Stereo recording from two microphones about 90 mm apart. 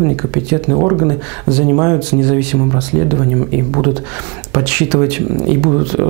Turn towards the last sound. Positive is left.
turn(degrees=-15)  # may be behind; listen again after turning